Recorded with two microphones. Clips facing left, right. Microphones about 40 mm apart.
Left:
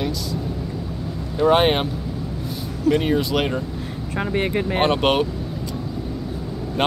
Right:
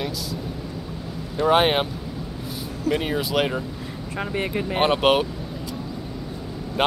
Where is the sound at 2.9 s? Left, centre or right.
Centre.